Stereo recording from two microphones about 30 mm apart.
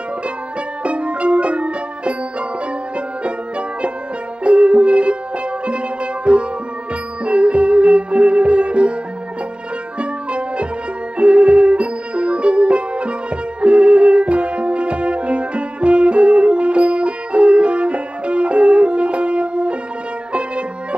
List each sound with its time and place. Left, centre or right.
0.8 s music: right
3.3 s music: right
6.3 s music: right
9.9 s music: right